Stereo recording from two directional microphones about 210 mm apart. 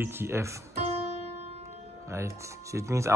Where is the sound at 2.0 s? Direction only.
15° right (ahead or behind).